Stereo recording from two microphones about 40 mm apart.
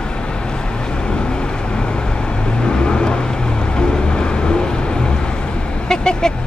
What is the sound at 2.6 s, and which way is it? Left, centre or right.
Vehicle, left.